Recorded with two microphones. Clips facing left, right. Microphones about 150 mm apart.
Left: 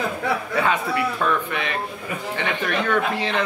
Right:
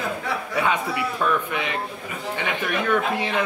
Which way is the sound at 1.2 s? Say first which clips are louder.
Right 1 dB; 10° right (ahead or behind).